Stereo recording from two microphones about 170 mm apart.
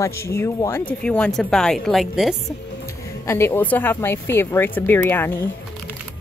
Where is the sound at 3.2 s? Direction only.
15° left (ahead or behind).